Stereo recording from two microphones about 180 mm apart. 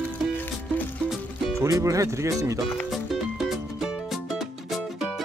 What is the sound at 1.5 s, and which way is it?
Speech, 15° right (ahead or behind).